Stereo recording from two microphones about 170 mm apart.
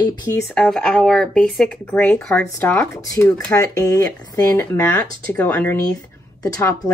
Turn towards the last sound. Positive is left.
turn(degrees=15)  # may be behind; listen again after turning